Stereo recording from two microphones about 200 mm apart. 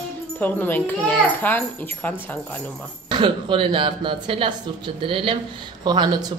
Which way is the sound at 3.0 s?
25° right (ahead or behind).